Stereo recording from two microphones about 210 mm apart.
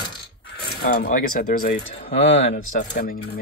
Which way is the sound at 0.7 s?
50° left (ahead or behind).